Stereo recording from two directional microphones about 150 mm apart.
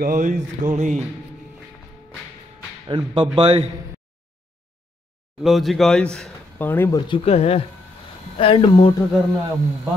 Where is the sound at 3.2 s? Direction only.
30° right (ahead or behind).